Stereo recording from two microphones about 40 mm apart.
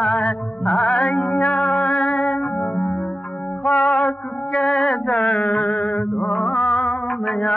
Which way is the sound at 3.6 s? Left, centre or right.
Left.